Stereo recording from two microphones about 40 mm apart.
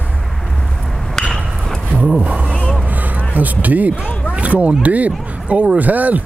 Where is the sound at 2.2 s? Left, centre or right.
Right.